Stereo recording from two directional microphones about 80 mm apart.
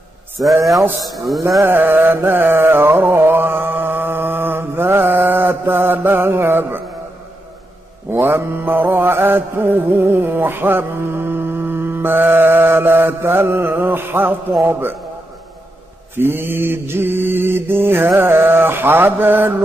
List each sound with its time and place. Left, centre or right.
1.6 s mantra: right
8.1 s mantra: right
16.2 s mantra: right